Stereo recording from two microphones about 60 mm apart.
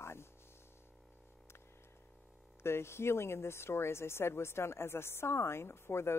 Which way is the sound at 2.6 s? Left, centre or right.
Left.